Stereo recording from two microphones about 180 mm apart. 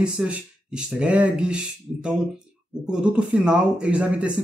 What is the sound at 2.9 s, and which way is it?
A man's voice, 5° right (ahead or behind).